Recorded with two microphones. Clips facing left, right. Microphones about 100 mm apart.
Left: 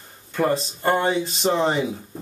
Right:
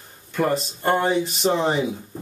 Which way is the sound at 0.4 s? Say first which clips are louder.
Even; centre (ahead or behind).